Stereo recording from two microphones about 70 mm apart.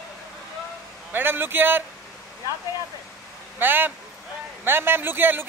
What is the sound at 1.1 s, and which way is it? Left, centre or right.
Speech, right.